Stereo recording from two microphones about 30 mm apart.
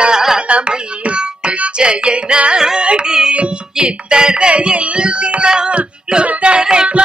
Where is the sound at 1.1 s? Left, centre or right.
Right.